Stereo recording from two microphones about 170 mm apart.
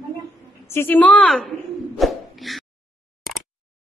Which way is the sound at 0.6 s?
15° left (ahead or behind).